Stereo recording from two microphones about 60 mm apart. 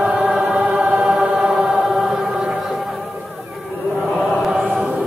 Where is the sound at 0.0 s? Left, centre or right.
Centre.